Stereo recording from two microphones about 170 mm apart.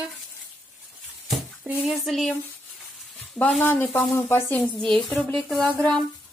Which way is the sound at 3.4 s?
5° left (ahead or behind).